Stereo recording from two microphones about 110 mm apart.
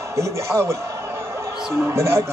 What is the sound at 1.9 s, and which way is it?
Speech, 25° right (ahead or behind).